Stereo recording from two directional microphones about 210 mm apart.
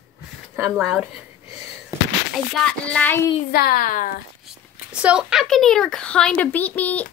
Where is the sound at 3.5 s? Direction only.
45° left (ahead or behind).